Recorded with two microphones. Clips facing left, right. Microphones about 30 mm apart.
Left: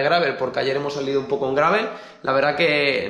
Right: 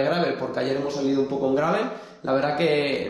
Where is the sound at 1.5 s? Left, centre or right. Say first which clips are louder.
Left 6 dB; left.